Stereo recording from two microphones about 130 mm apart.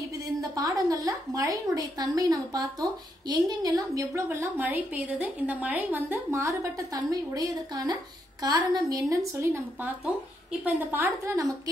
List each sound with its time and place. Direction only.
0.0 s a woman's voice: 25° right (ahead or behind)